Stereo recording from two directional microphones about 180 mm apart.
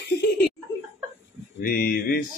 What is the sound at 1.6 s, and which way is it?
Speech, 55° left (ahead or behind).